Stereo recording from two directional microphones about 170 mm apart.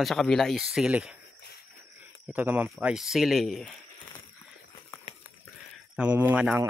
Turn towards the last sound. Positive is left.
turn(degrees=-10)  # may be behind; listen again after turning